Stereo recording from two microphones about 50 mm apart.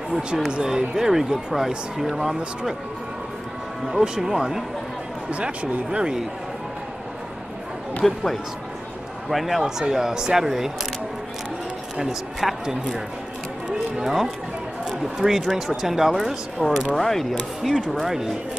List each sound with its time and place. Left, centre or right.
0.5 s speech: centre
3.9 s speech: centre
5.3 s speech: right
8.0 s speech: centre
12.0 s speech: centre
13.7 s a sound: centre
14.9 s speech: centre
17.9 s speech: centre